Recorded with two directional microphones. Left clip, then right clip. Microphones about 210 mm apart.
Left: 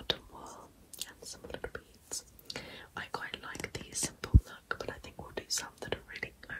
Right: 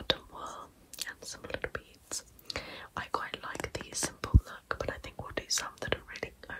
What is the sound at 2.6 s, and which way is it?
Whispering, 25° right (ahead or behind).